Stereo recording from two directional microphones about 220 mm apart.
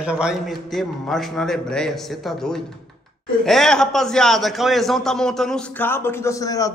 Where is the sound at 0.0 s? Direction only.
5° right (ahead or behind).